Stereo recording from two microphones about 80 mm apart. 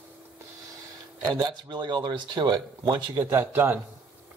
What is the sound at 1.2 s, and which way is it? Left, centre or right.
Speech, right.